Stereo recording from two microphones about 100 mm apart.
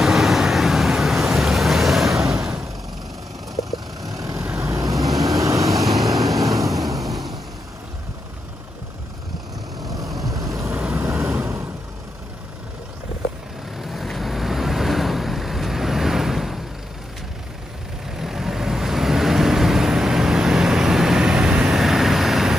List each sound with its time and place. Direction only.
0.0 s boat: centre (ahead or behind)
4.0 s vehicle: 35° right (ahead or behind)
5.8 s vehicle: centre (ahead or behind)
6.2 s vehicle: 35° right (ahead or behind)
7.0 s vehicle: centre (ahead or behind)
10.0 s vehicle: centre (ahead or behind)
13.7 s vehicle: centre (ahead or behind)
18.1 s vehicle: 5° right (ahead or behind)